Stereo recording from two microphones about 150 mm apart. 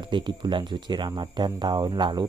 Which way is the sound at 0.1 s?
30° right (ahead or behind).